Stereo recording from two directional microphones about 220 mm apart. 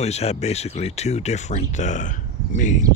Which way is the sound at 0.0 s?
30° left (ahead or behind).